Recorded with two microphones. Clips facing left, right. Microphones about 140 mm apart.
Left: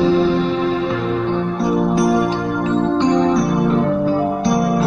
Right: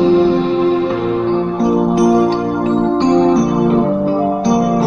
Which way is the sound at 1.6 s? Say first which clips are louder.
Right 4 dB; 25° right (ahead or behind).